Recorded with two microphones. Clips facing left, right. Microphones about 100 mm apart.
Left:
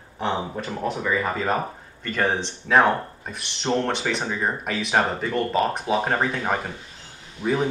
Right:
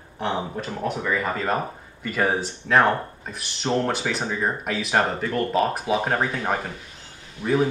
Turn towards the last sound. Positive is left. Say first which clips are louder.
# right 2 dB
turn(degrees=0)  # may be behind; listen again after turning